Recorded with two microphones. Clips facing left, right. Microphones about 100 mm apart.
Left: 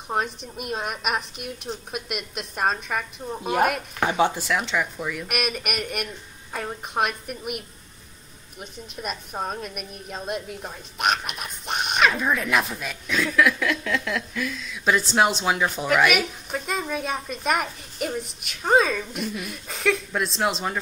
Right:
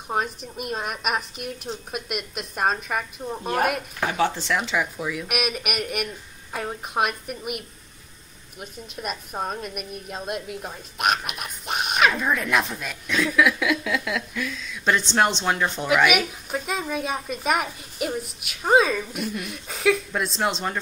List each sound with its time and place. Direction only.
0.1 s a woman's voice: centre (ahead or behind)
4.0 s speech: 20° left (ahead or behind)
4.4 s a woman's voice: centre (ahead or behind)